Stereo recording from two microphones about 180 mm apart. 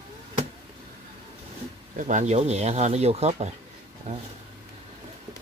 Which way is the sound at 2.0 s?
45° right (ahead or behind).